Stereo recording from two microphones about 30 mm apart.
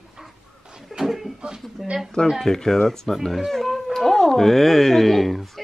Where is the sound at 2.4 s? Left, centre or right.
Centre.